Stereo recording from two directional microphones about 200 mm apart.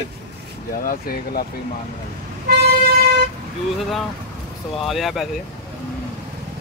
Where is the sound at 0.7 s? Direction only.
45° left (ahead or behind).